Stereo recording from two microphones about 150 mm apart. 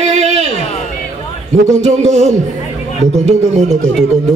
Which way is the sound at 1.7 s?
50° right (ahead or behind).